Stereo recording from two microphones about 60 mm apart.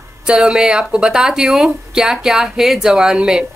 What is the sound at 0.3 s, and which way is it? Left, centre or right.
A woman's voice, centre.